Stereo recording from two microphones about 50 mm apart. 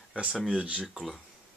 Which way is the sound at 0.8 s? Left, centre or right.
Centre.